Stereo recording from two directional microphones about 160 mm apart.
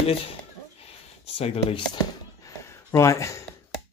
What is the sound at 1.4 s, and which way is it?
Speech, 35° left (ahead or behind).